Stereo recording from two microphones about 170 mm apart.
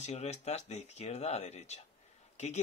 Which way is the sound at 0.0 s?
40° left (ahead or behind).